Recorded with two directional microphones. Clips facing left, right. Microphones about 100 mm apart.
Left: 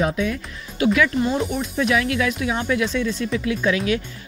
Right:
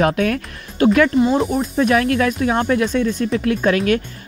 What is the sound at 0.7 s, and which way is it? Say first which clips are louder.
Speech: right 5 dB; 45° right (ahead or behind).